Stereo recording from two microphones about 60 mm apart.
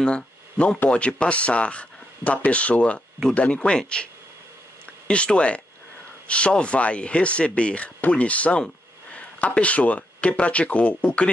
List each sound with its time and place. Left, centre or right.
0.0 s speech: centre